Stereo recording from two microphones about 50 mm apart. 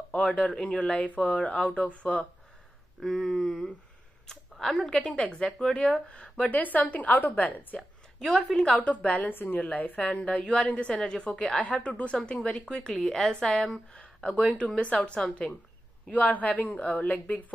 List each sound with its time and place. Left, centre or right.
0.1 s speech: left
3.0 s a woman's voice: centre; by 6.6 s left
6.6 s speech: left
8.5 s a woman's voice: centre
8.7 s a woman's voice: left; by 13.7 s centre
13.9 s speech: left
16.1 s speech: left